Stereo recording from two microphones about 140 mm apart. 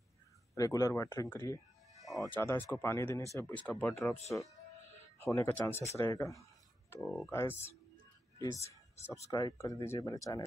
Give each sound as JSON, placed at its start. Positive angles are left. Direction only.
{"t": 0.6, "sound": "speech", "side_deg": 25}
{"t": 2.0, "sound": "music", "side_deg": 0}
{"t": 2.3, "sound": "speech", "side_deg": 15}
{"t": 5.2, "sound": "speech", "side_deg": 15}
{"t": 7.0, "sound": "speech", "side_deg": 5}
{"t": 7.2, "sound": "speech", "side_deg": 15}